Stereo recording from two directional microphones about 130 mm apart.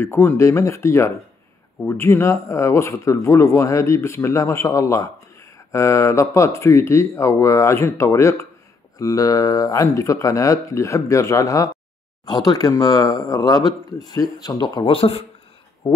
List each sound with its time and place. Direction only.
0.0 s speech: 15° left (ahead or behind); by 15.2 s 45° left (ahead or behind)